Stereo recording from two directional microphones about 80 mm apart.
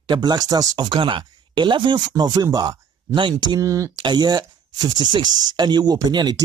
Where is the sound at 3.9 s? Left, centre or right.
Right.